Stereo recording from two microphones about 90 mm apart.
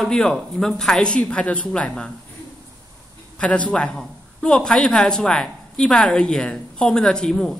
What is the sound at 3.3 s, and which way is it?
Speech, 10° left (ahead or behind).